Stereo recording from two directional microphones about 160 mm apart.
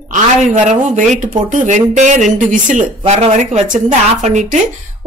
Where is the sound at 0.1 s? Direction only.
50° right (ahead or behind).